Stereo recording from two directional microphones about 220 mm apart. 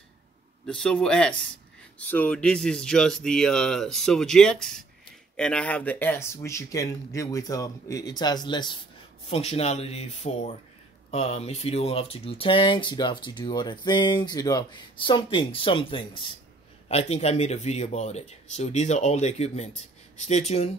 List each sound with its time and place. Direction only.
0.7 s speech: 5° left (ahead or behind); by 20.7 s 30° left (ahead or behind)